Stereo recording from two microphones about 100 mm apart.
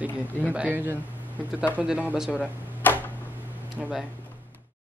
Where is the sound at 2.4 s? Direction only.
20° left (ahead or behind).